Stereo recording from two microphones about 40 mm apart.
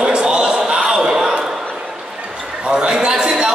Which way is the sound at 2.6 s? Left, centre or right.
Centre.